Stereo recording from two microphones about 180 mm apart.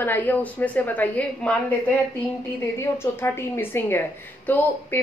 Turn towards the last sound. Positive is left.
turn(degrees=10)  # may be behind; listen again after turning